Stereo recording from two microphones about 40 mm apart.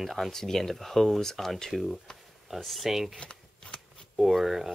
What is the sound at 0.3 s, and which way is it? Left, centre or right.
Speech, centre.